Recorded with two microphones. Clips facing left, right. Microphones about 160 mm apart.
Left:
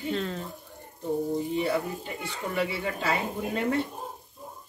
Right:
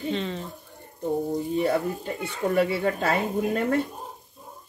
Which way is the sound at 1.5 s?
45° right (ahead or behind).